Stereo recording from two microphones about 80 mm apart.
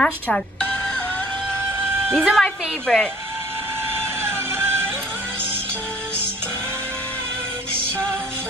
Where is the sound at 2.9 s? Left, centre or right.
Centre.